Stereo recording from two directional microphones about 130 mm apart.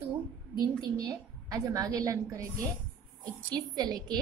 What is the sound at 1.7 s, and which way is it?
Speech, 30° right (ahead or behind).